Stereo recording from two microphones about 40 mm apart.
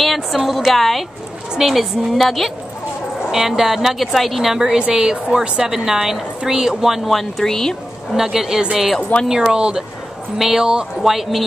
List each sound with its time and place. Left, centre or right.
0.0 s a sound: centre
0.5 s a woman's voice: centre
1.6 s a woman's voice: centre
3.2 s speech: centre
4.6 s speech: right
7.1 s speech: centre
8.1 s a woman's voice: centre
9.3 s speech: centre
11.0 s a woman's voice: centre